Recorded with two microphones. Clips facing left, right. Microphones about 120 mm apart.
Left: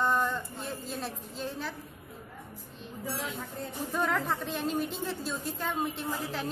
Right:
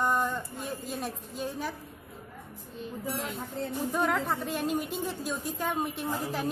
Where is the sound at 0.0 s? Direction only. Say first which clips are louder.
Even; 15° right (ahead or behind).